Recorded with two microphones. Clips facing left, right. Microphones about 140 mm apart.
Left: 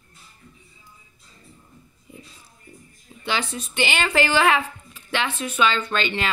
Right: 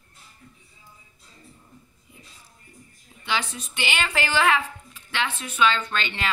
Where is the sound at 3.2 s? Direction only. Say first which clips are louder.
Left 2 dB; 35° left (ahead or behind).